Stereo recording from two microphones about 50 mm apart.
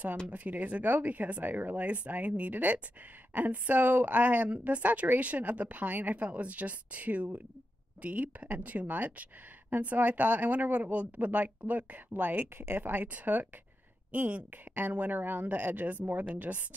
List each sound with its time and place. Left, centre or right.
0.3 s speech: right